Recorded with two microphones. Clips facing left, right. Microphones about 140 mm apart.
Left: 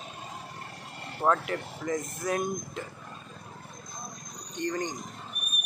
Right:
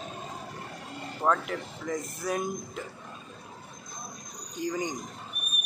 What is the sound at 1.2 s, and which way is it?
Speech, centre (ahead or behind).